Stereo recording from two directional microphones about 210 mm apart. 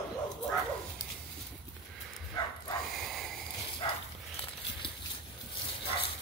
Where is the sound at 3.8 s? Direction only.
25° left (ahead or behind).